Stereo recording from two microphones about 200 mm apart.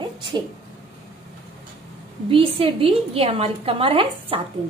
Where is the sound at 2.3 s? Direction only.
25° right (ahead or behind).